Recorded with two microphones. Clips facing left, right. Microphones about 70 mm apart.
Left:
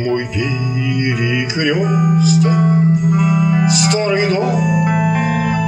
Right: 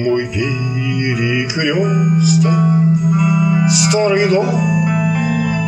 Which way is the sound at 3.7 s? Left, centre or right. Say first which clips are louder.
Right 2 dB; centre.